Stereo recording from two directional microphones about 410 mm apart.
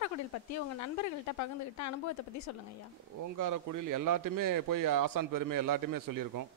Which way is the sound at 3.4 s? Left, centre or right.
Right.